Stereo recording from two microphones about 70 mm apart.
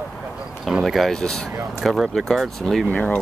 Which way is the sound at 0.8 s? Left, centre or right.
Centre.